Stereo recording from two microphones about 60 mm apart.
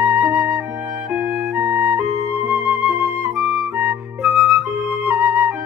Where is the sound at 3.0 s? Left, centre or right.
Right.